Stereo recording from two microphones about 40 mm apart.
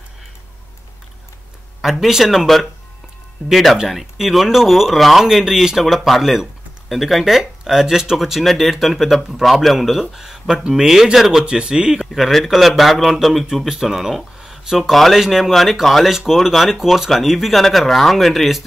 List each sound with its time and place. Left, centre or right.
1.8 s speech: centre
2.4 s speech: centre
3.9 s speech: centre
11.4 s speech: centre
12.1 s speech: centre
14.4 s a sound: centre
14.8 s speech: centre
17.6 s speech: centre